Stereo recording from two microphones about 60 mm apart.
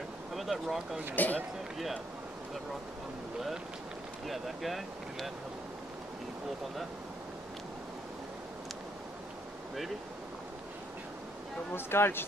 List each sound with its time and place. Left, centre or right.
0.3 s a sound: centre
1.1 s a man's voice: left
4.3 s speech: centre
11.7 s speech: left